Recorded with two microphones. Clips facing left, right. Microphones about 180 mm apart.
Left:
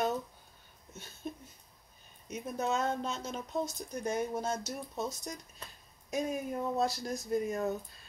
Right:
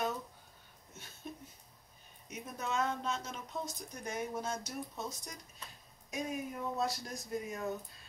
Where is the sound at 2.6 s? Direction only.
40° left (ahead or behind).